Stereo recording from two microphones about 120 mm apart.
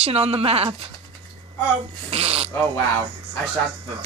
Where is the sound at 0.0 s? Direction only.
55° right (ahead or behind).